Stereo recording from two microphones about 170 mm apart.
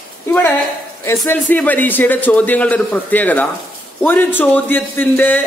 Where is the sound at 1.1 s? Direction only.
10° left (ahead or behind).